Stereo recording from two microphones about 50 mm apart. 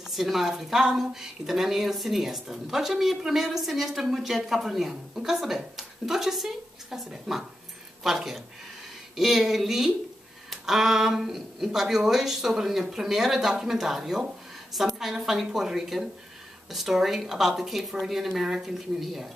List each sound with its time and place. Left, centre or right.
0.1 s a woman's voice: centre